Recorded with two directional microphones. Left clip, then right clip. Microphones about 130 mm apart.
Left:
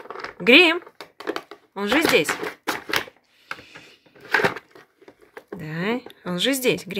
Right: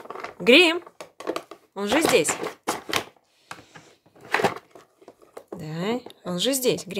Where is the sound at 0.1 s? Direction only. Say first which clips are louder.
Left 2 dB; 35° right (ahead or behind).